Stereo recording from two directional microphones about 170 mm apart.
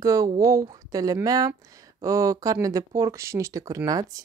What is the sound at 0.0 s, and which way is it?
Speech, 20° right (ahead or behind).